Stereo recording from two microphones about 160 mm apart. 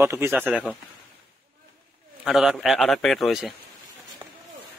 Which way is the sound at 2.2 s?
Centre (ahead or behind).